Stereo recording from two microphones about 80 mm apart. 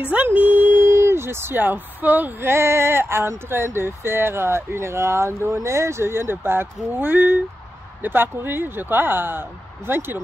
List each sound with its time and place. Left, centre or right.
0.4 s speech: right